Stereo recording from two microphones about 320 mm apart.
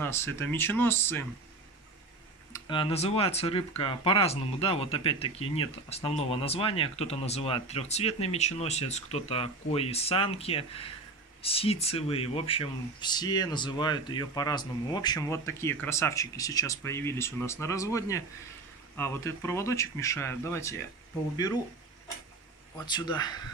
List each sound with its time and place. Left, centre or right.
0.0 s speech: centre
2.5 s speech: centre
22.8 s speech: centre